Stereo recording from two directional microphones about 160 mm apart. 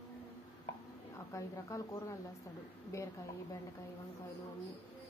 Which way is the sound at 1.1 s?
20° left (ahead or behind).